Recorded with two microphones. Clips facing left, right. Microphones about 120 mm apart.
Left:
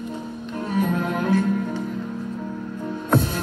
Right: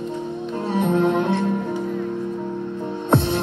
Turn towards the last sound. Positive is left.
turn(degrees=-25)  # may be behind; listen again after turning